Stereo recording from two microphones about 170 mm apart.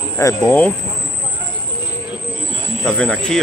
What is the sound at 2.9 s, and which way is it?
Speech, 5° left (ahead or behind).